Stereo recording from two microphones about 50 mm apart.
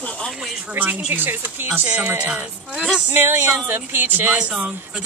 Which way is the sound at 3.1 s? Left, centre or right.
Right.